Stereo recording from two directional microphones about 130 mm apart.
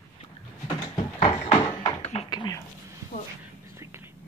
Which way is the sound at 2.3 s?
30° left (ahead or behind).